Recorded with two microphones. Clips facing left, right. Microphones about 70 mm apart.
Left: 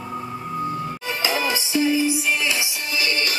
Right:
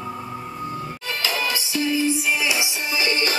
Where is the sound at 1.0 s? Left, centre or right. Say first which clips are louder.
Left 2 dB; centre.